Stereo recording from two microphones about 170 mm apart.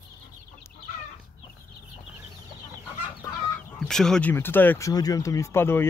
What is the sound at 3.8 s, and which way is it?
Speech, 5° left (ahead or behind).